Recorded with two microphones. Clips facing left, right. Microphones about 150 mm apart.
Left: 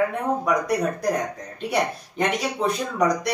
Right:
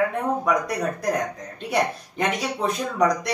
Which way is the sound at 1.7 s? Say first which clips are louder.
Right 1 dB; centre (ahead or behind).